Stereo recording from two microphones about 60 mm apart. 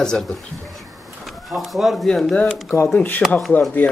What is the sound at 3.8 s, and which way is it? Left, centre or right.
Speech, left.